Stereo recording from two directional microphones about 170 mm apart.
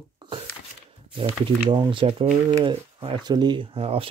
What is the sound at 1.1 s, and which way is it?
Speech, 30° right (ahead or behind).